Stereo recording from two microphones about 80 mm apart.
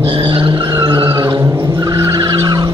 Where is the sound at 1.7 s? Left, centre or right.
Right.